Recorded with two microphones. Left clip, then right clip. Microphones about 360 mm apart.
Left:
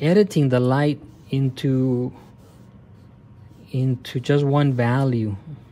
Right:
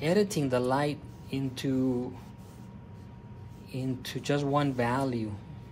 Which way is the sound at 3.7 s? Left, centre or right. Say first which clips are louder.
Left 8 dB; left.